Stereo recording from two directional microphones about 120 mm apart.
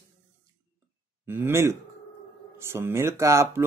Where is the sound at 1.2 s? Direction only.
20° right (ahead or behind).